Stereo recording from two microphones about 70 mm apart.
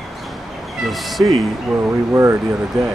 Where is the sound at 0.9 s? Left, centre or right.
Centre.